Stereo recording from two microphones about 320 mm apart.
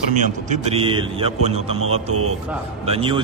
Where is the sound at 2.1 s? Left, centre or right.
Right.